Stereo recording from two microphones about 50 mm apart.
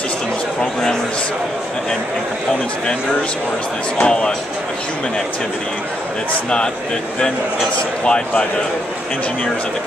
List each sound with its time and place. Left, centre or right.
4.0 s a man's voice: centre
8.0 s a man's voice: centre